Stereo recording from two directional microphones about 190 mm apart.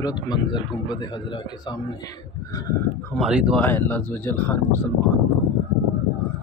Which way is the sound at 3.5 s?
10° left (ahead or behind).